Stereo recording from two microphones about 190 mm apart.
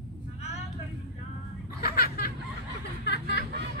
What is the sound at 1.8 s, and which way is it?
Snicker, 55° left (ahead or behind).